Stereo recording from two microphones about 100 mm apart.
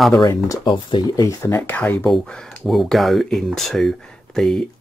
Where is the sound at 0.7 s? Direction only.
45° left (ahead or behind); by 2.0 s 15° left (ahead or behind).